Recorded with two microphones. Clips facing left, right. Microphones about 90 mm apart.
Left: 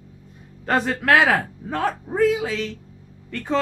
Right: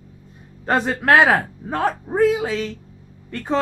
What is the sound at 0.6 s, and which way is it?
A man's voice, 25° right (ahead or behind).